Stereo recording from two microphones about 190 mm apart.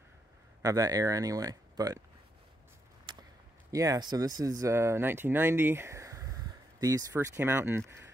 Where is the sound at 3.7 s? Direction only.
15° right (ahead or behind).